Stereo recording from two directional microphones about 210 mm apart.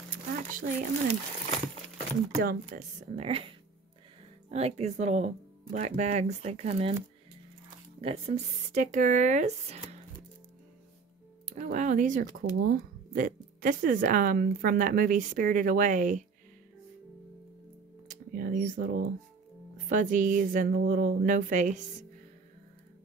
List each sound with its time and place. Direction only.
0.1 s a sound: 40° right (ahead or behind)
2.3 s speech: 40° right (ahead or behind)
8.0 s speech: 25° right (ahead or behind)
11.4 s speech: 35° right (ahead or behind)
18.0 s speech: 40° right (ahead or behind)